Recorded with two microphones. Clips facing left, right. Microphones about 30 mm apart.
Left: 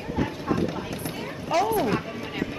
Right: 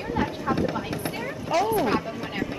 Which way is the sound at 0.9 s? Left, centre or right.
Right.